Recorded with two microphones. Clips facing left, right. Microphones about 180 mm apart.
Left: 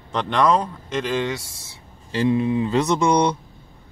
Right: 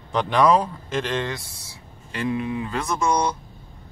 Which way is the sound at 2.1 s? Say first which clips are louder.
Left 6 dB; 30° left (ahead or behind).